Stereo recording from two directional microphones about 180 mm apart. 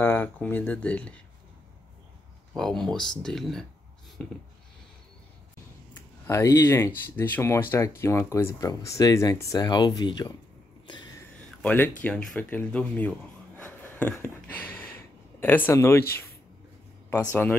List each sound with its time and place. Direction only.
0.0 s speech: 10° left (ahead or behind)
2.5 s speech: centre (ahead or behind)
6.2 s speech: 15° left (ahead or behind)
10.9 s a sound: 25° left (ahead or behind)
11.6 s speech: 10° left (ahead or behind)
13.7 s a sound: 10° left (ahead or behind)
17.1 s speech: 10° left (ahead or behind)